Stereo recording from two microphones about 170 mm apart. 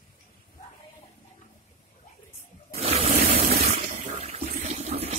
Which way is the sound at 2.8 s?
35° right (ahead or behind).